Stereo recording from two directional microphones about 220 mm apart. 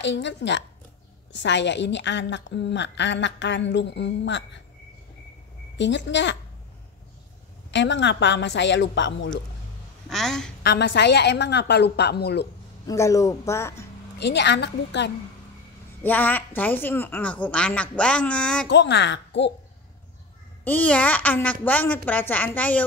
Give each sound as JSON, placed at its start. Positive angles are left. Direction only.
{"t": 0.0, "sound": "a woman's voice", "side_deg": 55}
{"t": 5.8, "sound": "a woman's voice", "side_deg": 55}
{"t": 7.7, "sound": "a woman's voice", "side_deg": 55}
{"t": 10.0, "sound": "speech", "side_deg": 0}
{"t": 10.6, "sound": "a woman's voice", "side_deg": 50}
{"t": 12.8, "sound": "a woman's voice", "side_deg": 15}
{"t": 14.1, "sound": "a woman's voice", "side_deg": 50}
{"t": 16.0, "sound": "a woman's voice", "side_deg": 10}
{"t": 18.7, "sound": "a woman's voice", "side_deg": 50}
{"t": 20.6, "sound": "a woman's voice", "side_deg": 5}